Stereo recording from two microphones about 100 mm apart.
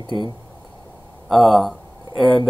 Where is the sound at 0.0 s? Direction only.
50° right (ahead or behind).